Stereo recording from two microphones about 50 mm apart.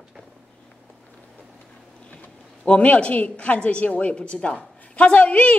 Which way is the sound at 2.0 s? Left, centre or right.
Left.